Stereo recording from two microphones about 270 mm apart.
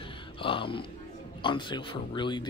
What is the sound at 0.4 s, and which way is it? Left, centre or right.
Speech, centre.